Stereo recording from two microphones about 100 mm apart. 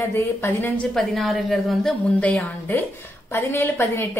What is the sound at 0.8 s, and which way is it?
A woman's voice, 5° left (ahead or behind).